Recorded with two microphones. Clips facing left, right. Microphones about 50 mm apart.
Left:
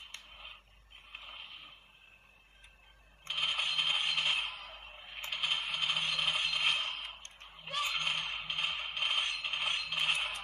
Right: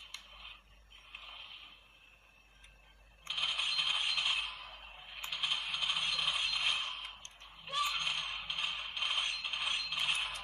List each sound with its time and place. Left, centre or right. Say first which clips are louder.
3.3 s coin: left 2 dB; left
5.3 s scrape: left 2 dB; left